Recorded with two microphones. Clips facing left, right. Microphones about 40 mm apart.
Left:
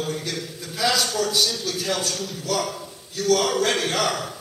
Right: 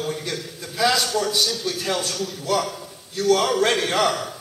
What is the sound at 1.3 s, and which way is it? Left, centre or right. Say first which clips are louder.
Speech: even; centre.